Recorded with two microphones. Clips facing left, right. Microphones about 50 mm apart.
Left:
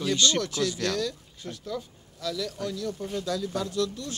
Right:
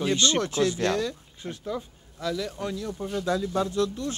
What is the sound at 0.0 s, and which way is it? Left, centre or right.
A man's voice, right.